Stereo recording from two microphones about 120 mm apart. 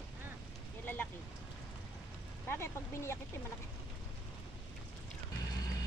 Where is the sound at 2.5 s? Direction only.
20° left (ahead or behind).